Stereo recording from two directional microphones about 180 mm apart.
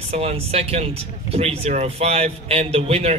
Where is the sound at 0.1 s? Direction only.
35° right (ahead or behind).